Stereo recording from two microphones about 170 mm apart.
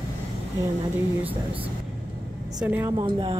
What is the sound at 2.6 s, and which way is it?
Speech, 20° right (ahead or behind).